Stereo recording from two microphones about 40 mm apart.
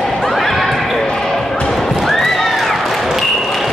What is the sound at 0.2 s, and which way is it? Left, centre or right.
Basketball bounce, centre.